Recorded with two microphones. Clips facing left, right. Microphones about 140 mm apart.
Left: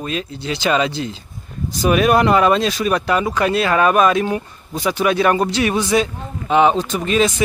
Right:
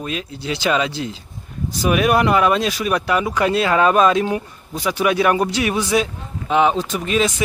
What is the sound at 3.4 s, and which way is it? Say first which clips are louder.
Speech: even; 20° right (ahead or behind).